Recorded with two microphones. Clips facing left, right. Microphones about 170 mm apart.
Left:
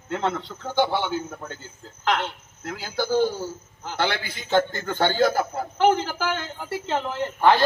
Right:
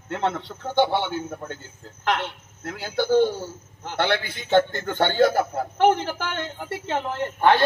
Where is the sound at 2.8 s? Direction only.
60° right (ahead or behind).